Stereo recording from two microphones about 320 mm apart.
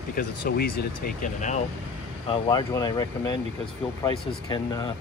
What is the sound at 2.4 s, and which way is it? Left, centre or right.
Speech, centre.